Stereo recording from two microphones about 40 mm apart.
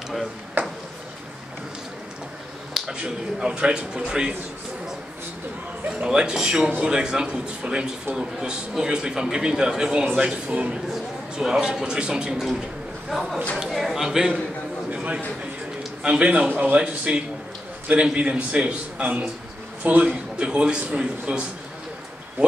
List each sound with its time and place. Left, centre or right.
0.6 s a sound: right
2.7 s a man's voice: right
5.9 s a man's voice: centre
11.3 s a man's voice: centre
13.1 s a man's voice: centre
16.0 s a man's voice: right
16.4 s speech: right
16.7 s a man's voice: right
20.3 s a man's voice: right